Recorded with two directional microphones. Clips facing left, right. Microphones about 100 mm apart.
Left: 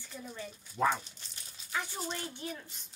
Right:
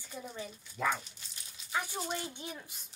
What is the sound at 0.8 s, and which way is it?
Speech, 35° left (ahead or behind).